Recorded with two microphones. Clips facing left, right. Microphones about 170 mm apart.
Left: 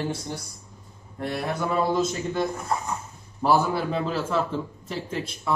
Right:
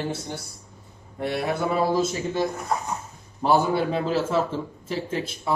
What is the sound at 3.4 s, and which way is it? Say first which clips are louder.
Speech: right 1 dB; 25° right (ahead or behind).